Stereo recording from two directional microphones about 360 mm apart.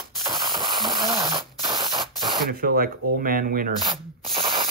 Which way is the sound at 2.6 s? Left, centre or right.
Right.